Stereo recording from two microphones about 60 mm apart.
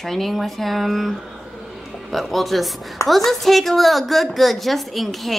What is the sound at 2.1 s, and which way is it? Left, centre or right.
A woman's voice, centre.